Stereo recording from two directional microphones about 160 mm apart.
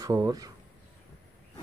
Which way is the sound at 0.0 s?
20° right (ahead or behind).